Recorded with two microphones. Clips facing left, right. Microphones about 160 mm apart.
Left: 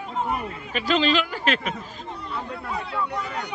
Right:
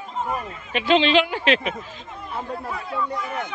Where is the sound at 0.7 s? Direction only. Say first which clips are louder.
Right 4 dB; 40° left (ahead or behind).